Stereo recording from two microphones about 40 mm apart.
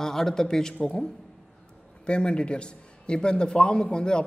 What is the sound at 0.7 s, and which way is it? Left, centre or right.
Speech, left.